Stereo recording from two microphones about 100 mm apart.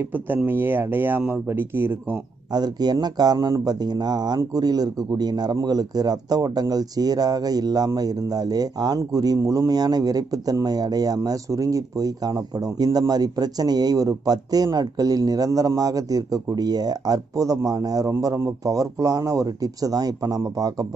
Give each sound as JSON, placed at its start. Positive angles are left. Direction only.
{"t": 0.5, "sound": "speech", "side_deg": -20}
{"t": 2.5, "sound": "speech", "side_deg": -40}